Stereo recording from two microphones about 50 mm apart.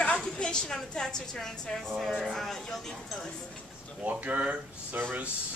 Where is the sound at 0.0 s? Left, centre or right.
Centre.